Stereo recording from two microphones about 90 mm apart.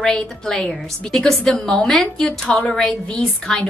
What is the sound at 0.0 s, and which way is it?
A woman's voice, 5° left (ahead or behind).